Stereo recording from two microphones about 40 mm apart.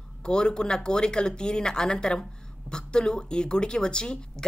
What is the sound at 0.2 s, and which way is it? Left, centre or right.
Speech, left.